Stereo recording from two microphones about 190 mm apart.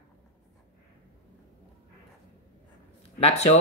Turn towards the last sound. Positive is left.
turn(degrees=35)  # may be behind; listen again after turning